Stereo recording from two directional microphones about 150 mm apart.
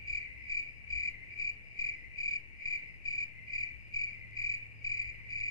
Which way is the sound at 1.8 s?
25° left (ahead or behind).